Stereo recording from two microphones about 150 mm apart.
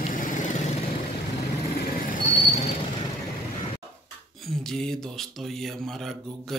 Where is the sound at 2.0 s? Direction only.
60° left (ahead or behind).